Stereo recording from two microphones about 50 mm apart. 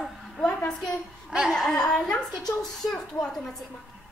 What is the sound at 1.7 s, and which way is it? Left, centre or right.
Speech, centre.